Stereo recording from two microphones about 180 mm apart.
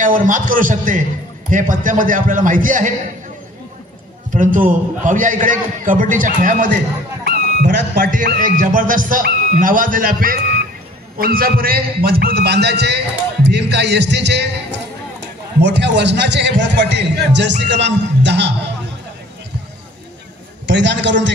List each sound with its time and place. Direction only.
0.0 s a man's voice: 45° right (ahead or behind)
4.3 s a man's voice: 45° right (ahead or behind)
7.2 s a man's voice: 60° right (ahead or behind)
15.6 s a man's voice: 75° right (ahead or behind)
20.6 s a man's voice: 75° right (ahead or behind)